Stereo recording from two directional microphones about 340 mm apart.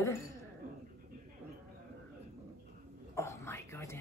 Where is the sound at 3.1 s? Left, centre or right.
Centre.